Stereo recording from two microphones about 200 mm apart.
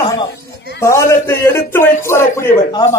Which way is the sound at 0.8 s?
15° left (ahead or behind).